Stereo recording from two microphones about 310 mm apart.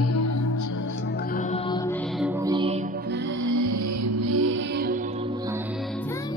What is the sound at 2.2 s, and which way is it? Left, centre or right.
Music, centre.